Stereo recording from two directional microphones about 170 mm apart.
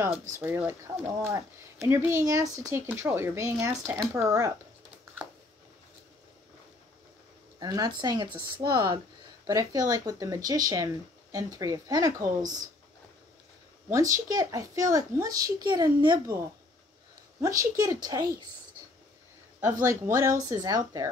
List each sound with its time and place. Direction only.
0.4 s speech: 10° right (ahead or behind)
7.6 s speech: 25° right (ahead or behind)
13.8 s speech: 20° right (ahead or behind)
17.7 s speech: 20° right (ahead or behind)
19.8 s speech: 15° right (ahead or behind)